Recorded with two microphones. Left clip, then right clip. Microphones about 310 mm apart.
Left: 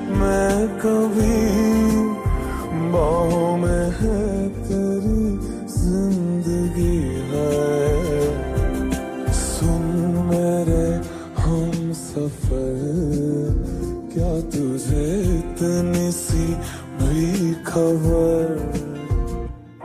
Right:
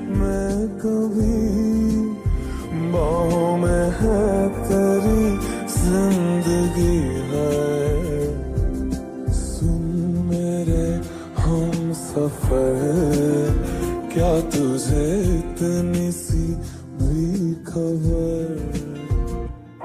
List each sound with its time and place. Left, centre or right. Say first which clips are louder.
0.1 s music: left 6 dB; centre
1.0 s music: left 3 dB; left
2.7 s music: left 2 dB; centre
8.7 s music: left 3 dB; left; by 11.0 s centre
11.4 s music: right 1 dB; centre
12.4 s music: right 8 dB; right
14.1 s music: right 6 dB; right; by 16.5 s centre
17.0 s music: left 2 dB; left